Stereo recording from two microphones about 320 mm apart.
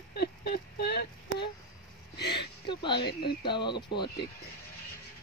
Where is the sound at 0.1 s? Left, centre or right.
Left.